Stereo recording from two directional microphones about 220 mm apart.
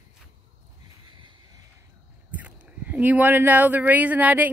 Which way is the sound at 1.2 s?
20° right (ahead or behind).